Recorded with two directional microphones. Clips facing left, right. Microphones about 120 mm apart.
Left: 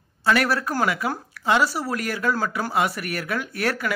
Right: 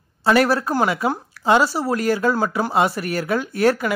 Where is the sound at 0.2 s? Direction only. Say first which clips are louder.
Right 5 dB; 25° right (ahead or behind).